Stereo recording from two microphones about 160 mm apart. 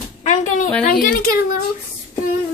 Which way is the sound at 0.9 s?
65° left (ahead or behind).